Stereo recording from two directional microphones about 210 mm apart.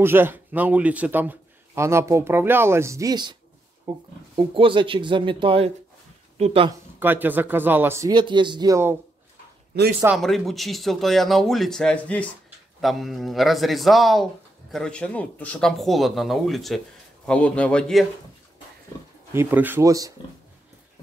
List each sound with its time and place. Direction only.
0.0 s a man's voice: 10° right (ahead or behind)
3.9 s speech: 30° right (ahead or behind)
7.0 s a man's voice: 10° right (ahead or behind)
10.0 s speech: centre (ahead or behind)
19.3 s a man's voice: 10° right (ahead or behind)